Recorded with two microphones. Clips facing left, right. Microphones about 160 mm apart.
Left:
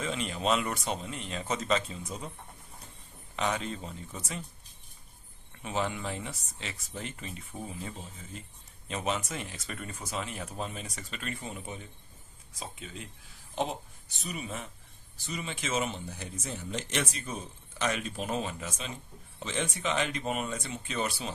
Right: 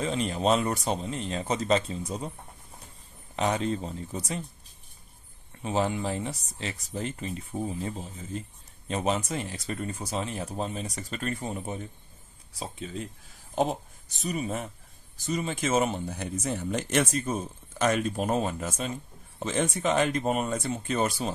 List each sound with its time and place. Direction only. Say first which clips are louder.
0.0 s speech: right 5 dB; 35° right (ahead or behind)
3.3 s speech: right 5 dB; 35° right (ahead or behind)
5.6 s speech: right 5 dB; 35° right (ahead or behind)